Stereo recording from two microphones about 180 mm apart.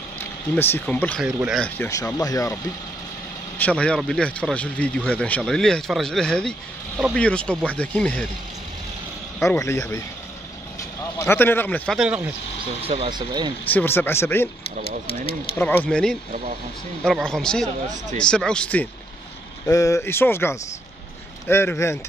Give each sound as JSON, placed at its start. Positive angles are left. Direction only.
{"t": 0.6, "sound": "speech", "side_deg": 10}
{"t": 1.2, "sound": "speech", "side_deg": -5}
{"t": 1.6, "sound": "speech", "side_deg": 15}
{"t": 3.5, "sound": "speech", "side_deg": 5}
{"t": 9.4, "sound": "speech", "side_deg": 15}
{"t": 11.1, "sound": "speech", "side_deg": 10}
{"t": 12.8, "sound": "speech", "side_deg": -30}
{"t": 13.7, "sound": "speech", "side_deg": 10}
{"t": 15.6, "sound": "speech", "side_deg": 10}
{"t": 19.7, "sound": "speech", "side_deg": 20}